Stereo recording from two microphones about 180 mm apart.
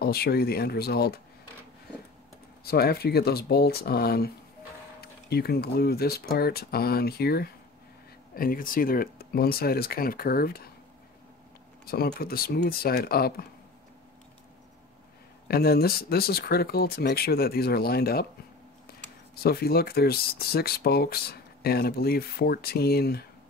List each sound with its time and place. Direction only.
0.0 s speech: 60° left (ahead or behind)
2.6 s speech: 60° left (ahead or behind)
11.8 s speech: 60° left (ahead or behind)
15.4 s speech: 60° left (ahead or behind)
19.4 s speech: 60° left (ahead or behind)